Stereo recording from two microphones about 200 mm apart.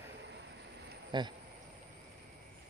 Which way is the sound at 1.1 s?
20° right (ahead or behind).